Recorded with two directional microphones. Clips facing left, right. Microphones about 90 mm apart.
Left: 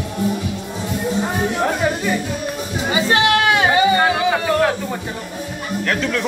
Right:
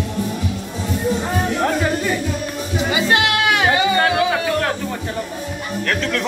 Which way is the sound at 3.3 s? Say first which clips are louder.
Left 2 dB; 30° left (ahead or behind).